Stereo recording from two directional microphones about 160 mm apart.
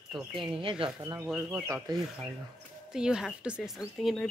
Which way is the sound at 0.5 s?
35° right (ahead or behind).